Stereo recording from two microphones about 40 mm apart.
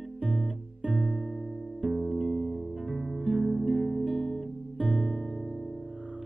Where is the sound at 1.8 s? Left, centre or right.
Centre.